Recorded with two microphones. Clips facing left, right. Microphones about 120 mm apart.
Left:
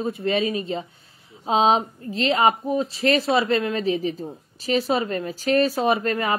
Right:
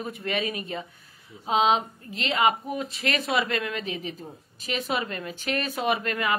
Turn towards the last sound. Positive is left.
turn(degrees=35)  # may be behind; listen again after turning